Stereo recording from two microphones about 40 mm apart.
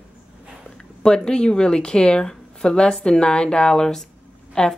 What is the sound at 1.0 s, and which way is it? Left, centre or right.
A woman's voice, centre.